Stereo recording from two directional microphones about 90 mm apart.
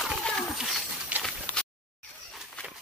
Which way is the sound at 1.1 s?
15° right (ahead or behind).